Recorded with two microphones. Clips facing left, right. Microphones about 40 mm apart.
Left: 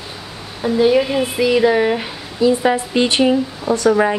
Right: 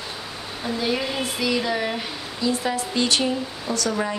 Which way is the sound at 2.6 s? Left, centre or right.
Left.